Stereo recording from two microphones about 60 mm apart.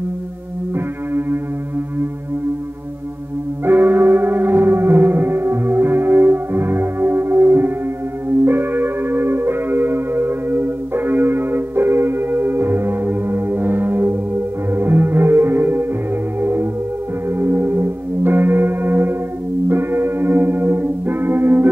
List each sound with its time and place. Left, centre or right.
0.7 s music: right
3.6 s music: right
17.3 s singing bowl: right
19.7 s music: right